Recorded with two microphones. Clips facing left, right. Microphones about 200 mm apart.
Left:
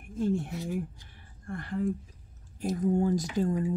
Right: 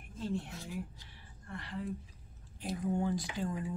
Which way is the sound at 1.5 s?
50° left (ahead or behind).